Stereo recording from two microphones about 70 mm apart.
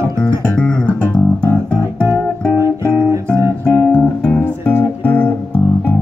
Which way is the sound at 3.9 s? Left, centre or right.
Left.